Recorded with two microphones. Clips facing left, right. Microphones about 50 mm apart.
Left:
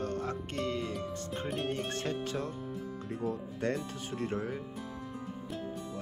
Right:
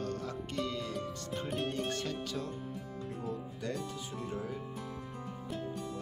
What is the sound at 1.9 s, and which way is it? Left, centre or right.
Music, left.